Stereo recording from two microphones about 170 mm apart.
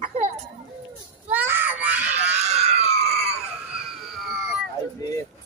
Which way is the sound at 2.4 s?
40° right (ahead or behind).